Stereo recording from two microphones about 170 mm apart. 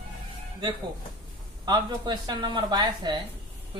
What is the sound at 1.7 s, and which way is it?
A woman's voice, 25° right (ahead or behind).